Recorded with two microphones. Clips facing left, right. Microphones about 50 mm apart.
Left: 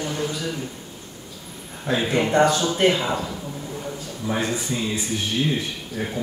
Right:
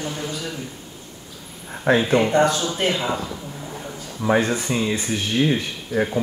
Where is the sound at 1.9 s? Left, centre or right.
Right.